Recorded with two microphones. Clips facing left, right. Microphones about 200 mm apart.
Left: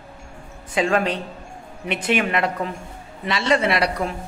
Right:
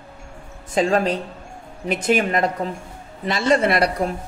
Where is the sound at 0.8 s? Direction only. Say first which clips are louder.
Right 2 dB; 35° right (ahead or behind).